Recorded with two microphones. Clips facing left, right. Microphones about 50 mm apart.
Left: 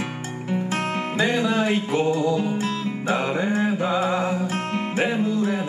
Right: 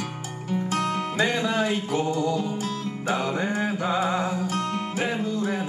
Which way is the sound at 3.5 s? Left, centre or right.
Left.